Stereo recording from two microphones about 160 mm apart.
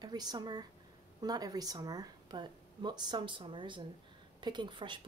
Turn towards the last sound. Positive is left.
turn(degrees=-30)  # may be behind; listen again after turning